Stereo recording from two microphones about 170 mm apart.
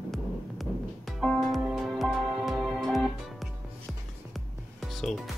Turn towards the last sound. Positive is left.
turn(degrees=0)  # may be behind; listen again after turning